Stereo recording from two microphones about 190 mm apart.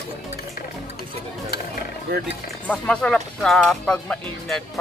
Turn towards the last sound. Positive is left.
turn(degrees=0)  # may be behind; listen again after turning